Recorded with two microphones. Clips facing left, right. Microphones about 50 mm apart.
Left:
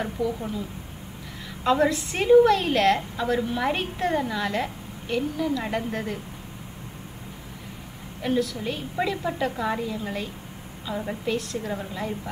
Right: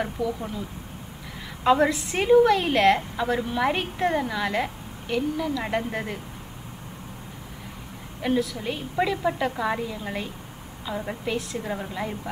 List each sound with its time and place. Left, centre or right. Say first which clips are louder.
1.6 s a woman's voice: right 1 dB; centre
8.2 s a woman's voice: even; centre